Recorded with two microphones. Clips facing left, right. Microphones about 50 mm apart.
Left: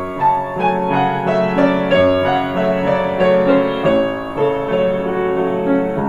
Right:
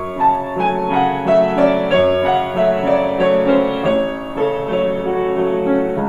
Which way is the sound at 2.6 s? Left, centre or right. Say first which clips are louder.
Right 3 dB; centre.